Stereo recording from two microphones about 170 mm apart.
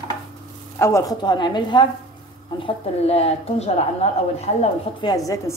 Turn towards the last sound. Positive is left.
turn(degrees=20)  # may be behind; listen again after turning